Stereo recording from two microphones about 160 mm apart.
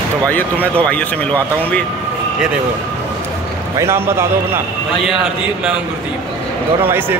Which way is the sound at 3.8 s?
15° right (ahead or behind).